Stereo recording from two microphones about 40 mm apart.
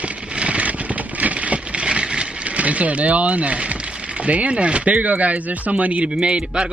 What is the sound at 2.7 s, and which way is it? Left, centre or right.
Speech, right.